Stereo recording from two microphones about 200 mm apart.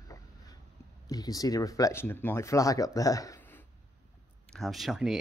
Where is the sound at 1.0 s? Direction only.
20° left (ahead or behind).